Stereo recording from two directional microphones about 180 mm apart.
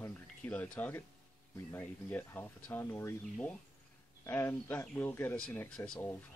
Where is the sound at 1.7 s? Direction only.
10° left (ahead or behind).